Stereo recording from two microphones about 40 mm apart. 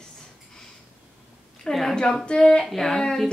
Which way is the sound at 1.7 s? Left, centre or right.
Centre.